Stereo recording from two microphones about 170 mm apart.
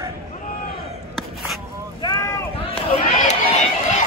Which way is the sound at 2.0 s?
20° left (ahead or behind).